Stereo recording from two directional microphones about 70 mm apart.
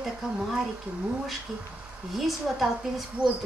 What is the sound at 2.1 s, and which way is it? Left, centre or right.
Speech, centre.